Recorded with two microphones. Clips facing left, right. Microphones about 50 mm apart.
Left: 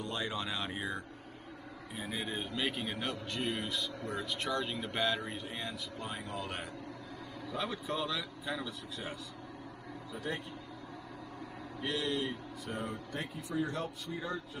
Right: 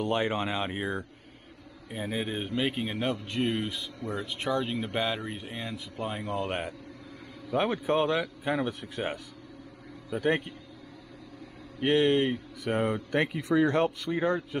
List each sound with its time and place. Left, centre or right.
0.0 s a man's voice: right
10.1 s speech: right
11.8 s speech: right